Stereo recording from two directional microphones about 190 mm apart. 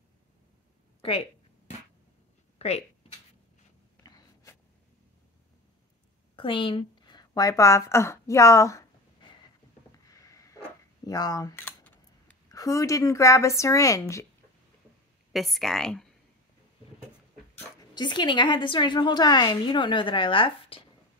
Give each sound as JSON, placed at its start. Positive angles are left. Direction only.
{"t": 4.0, "sound": "a sound", "side_deg": 20}
{"t": 6.3, "sound": "speech", "side_deg": 25}
{"t": 10.1, "sound": "a sound", "side_deg": 15}
{"t": 12.4, "sound": "a woman's voice", "side_deg": 15}
{"t": 15.3, "sound": "speech", "side_deg": 0}
{"t": 17.9, "sound": "a woman's voice", "side_deg": 25}